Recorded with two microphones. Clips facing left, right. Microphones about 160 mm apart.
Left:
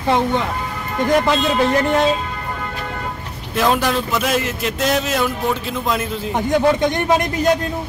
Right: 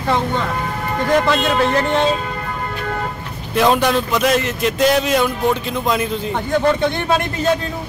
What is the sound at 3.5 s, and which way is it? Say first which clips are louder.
Speech: right 3 dB; centre (ahead or behind).